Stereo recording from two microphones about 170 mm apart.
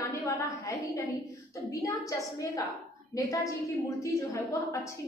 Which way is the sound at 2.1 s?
20° left (ahead or behind).